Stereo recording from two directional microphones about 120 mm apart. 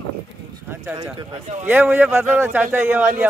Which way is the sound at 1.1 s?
65° right (ahead or behind).